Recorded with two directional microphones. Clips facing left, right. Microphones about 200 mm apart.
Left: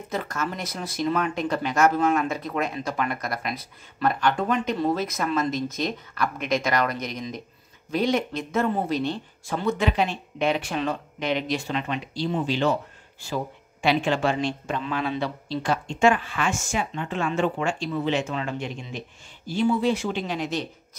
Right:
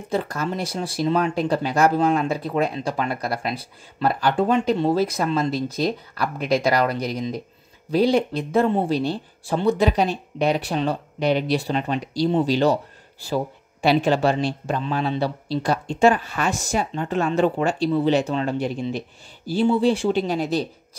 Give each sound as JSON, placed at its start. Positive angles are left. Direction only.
{"t": 0.1, "sound": "speech", "side_deg": -30}